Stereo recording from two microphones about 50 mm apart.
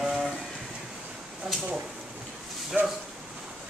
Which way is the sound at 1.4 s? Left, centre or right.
Centre.